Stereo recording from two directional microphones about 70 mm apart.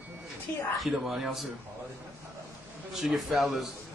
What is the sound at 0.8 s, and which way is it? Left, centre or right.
Speech, centre.